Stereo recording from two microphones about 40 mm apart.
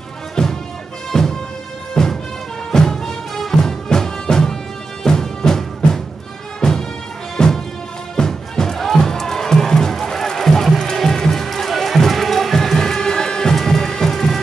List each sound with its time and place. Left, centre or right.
0.4 s music: centre
7.3 s music: centre